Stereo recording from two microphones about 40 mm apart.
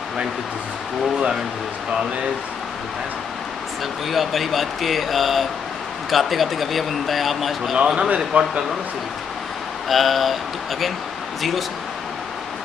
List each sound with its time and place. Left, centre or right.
4.1 s speech: centre
7.7 s speech: centre
8.3 s speech: right
9.8 s speech: centre